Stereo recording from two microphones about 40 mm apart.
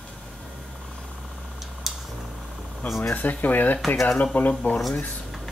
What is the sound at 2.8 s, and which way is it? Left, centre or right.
Speech, left.